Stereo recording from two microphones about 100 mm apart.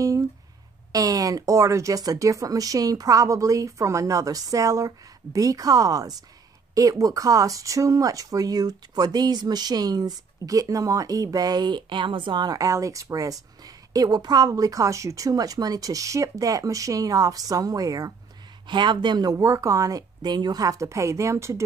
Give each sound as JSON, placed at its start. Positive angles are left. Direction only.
{"t": 0.9, "sound": "speech", "side_deg": -35}
{"t": 18.7, "sound": "speech", "side_deg": -50}
{"t": 19.3, "sound": "speech", "side_deg": -30}